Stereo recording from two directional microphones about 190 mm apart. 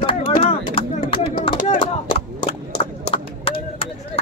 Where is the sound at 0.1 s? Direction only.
45° left (ahead or behind).